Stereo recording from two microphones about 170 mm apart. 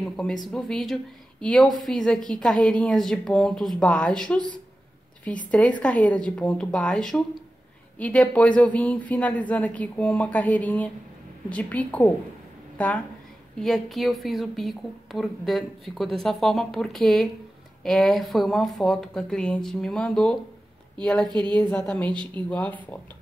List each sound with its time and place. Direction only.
0.0 s a woman's voice: 5° left (ahead or behind)
5.5 s a woman's voice: 10° left (ahead or behind)
21.3 s a woman's voice: 25° right (ahead or behind)
21.8 s speech: 10° left (ahead or behind)
22.1 s a woman's voice: 30° right (ahead or behind)
22.5 s speech: 10° left (ahead or behind)